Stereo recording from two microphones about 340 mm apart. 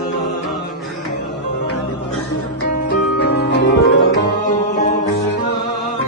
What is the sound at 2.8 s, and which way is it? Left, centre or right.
Music, left.